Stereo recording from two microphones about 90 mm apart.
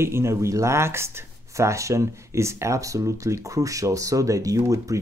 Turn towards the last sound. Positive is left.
turn(degrees=-40)  # may be behind; listen again after turning